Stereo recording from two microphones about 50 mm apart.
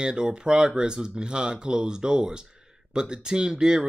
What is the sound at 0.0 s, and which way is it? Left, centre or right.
Speech, centre.